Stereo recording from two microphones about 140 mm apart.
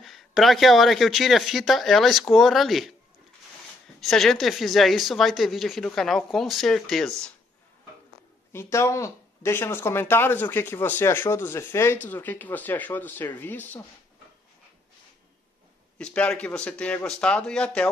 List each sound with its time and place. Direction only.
0.0 s speech: centre (ahead or behind)
4.0 s speech: centre (ahead or behind)
8.5 s speech: 20° left (ahead or behind)
16.0 s speech: 10° left (ahead or behind)